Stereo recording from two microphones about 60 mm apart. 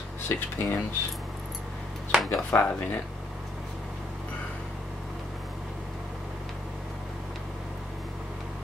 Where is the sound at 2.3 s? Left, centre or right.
Left.